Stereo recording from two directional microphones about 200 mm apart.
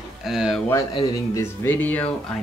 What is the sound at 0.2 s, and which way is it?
Speech, centre (ahead or behind).